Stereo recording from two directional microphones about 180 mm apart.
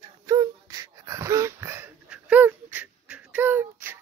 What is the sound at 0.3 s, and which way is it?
Whimper, 20° right (ahead or behind).